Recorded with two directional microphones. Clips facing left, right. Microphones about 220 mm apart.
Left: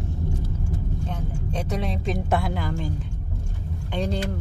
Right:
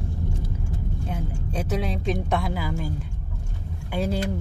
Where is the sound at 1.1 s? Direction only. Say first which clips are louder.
Right 2 dB; 5° right (ahead or behind).